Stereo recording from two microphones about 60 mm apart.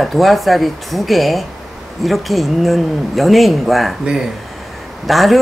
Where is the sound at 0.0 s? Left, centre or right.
Centre.